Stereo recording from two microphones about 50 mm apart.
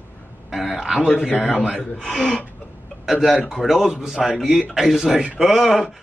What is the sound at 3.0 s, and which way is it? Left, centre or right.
Speech, centre.